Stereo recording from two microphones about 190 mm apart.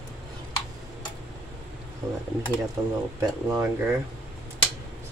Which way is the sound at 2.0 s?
20° right (ahead or behind).